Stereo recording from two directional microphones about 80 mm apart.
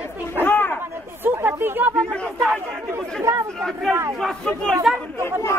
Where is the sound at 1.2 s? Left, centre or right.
Right.